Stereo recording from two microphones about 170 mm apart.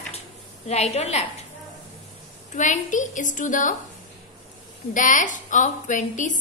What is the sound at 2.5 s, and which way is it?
A woman's voice, 45° left (ahead or behind).